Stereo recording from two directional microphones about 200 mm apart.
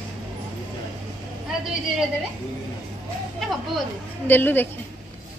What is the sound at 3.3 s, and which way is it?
A child's voice, centre (ahead or behind).